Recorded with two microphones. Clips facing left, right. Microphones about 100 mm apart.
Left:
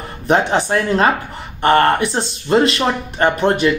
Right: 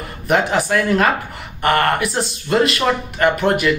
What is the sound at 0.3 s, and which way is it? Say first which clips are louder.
Speech: left 2 dB; 30° left (ahead or behind).